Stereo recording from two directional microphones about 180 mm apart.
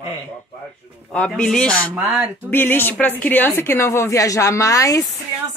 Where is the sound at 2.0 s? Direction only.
10° right (ahead or behind).